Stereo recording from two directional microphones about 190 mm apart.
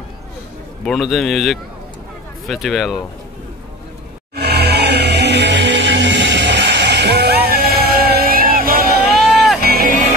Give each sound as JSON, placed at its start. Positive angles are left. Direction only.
{"t": 0.8, "sound": "a man's voice", "side_deg": 0}
{"t": 4.4, "sound": "music", "side_deg": -60}